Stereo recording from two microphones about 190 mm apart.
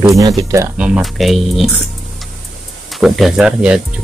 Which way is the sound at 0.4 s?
15° right (ahead or behind).